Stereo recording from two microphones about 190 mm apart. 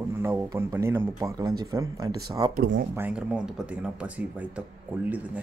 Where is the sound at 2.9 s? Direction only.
5° right (ahead or behind).